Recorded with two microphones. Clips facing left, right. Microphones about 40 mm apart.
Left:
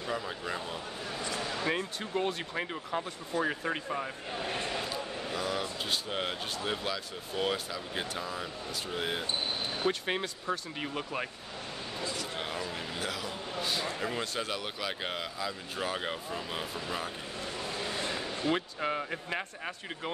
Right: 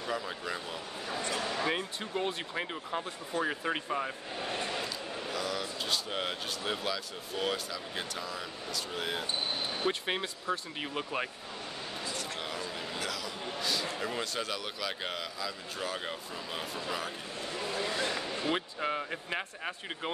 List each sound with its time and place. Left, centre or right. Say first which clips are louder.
0.0 s speech: even; centre
1.4 s a sound: left 2 dB; centre
2.2 s speech: left 1 dB; centre
3.3 s speech: left 1 dB; right
3.7 s speech: right 1 dB; centre
4.8 s a sound: left 2 dB; left
6.0 s a man's voice: left 1 dB; centre
9.8 s speech: left 2 dB; centre
13.0 s a sound: left 1 dB; left
13.8 s a man's voice: left 1 dB; centre
17.6 s vehicle: right 3 dB; centre
18.4 s speech: left 3 dB; centre